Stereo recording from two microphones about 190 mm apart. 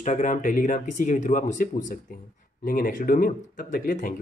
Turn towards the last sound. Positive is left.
turn(degrees=45)  # may be behind; listen again after turning